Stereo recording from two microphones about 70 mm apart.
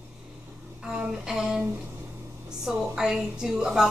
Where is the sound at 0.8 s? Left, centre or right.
Centre.